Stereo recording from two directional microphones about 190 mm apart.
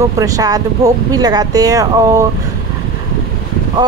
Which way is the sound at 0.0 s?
20° right (ahead or behind).